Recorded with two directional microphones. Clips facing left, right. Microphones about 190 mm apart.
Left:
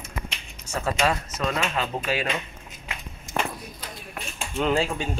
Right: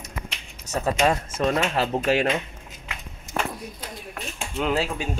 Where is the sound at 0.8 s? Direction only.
20° right (ahead or behind).